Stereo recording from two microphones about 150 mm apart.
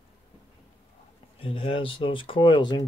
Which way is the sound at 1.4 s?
35° left (ahead or behind).